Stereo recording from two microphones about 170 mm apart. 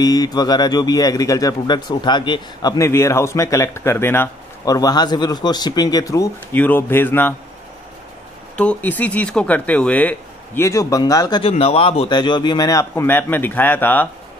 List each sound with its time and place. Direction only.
0.0 s speech: 25° left (ahead or behind)
8.5 s speech: 10° left (ahead or behind)